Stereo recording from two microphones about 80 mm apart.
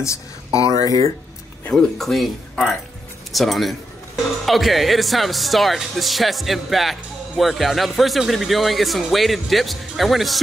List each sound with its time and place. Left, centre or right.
0.0 s speech: left
1.7 s speech: centre